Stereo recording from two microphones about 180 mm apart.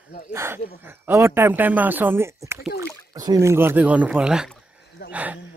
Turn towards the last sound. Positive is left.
turn(degrees=-10)  # may be behind; listen again after turning